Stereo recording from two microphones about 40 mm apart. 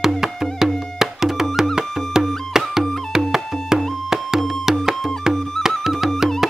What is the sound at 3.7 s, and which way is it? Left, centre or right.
Music, centre.